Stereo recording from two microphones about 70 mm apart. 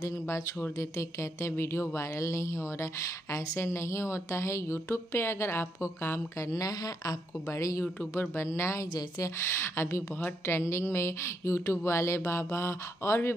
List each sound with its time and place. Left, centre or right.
0.3 s speech: left
6.5 s speech: left